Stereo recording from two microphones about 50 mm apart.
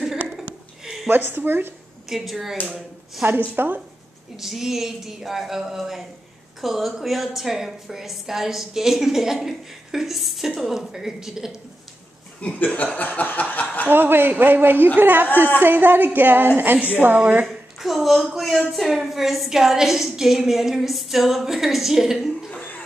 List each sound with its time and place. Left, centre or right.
1.0 s a woman's voice: right
2.0 s a woman's voice: centre
3.2 s a woman's voice: right
4.4 s a woman's voice: centre
12.5 s chuckle: left
13.8 s a woman's voice: right
17.5 s a woman's voice: centre